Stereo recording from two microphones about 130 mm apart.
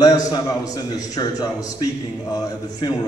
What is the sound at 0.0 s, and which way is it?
A man's voice, 30° left (ahead or behind).